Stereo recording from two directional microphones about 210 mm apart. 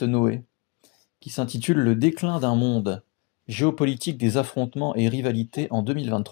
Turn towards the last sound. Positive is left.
turn(degrees=35)  # may be behind; listen again after turning